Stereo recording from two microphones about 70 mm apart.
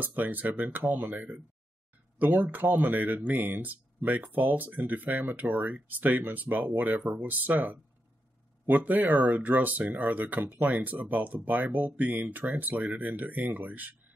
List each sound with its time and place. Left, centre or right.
0.0 s speech: right